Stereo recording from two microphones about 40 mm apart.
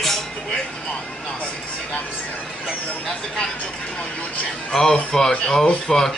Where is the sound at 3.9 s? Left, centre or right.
Left.